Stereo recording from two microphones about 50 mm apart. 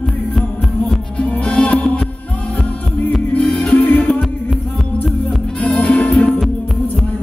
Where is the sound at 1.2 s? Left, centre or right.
Left.